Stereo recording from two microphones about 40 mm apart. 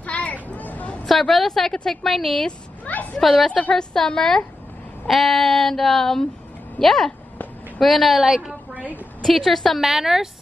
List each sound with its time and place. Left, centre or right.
0.0 s a sound: left
1.3 s child singing: centre
2.8 s a sound: left
3.2 s child singing: centre
3.7 s a woman's voice: centre
5.0 s child singing: centre
6.8 s a woman's voice: centre
7.8 s child singing: centre
9.3 s child singing: centre
9.8 s a woman's voice: centre